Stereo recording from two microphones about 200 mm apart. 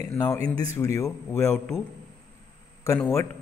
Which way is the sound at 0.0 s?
10° left (ahead or behind).